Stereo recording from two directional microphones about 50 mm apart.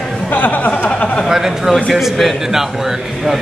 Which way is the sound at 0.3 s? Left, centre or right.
Left.